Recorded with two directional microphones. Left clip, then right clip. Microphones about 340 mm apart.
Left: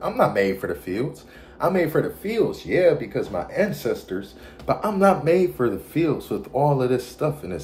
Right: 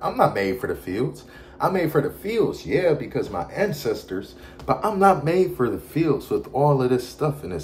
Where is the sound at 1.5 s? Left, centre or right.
Centre.